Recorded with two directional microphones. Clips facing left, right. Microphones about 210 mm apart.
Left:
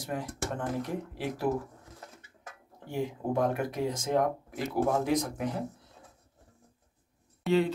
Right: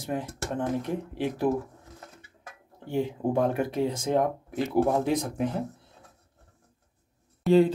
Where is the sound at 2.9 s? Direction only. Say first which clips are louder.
Right 4 dB; 25° right (ahead or behind).